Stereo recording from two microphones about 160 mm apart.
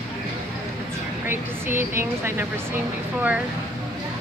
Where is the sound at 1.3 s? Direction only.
15° right (ahead or behind).